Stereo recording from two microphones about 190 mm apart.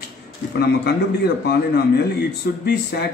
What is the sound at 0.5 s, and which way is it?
Speech, 60° left (ahead or behind).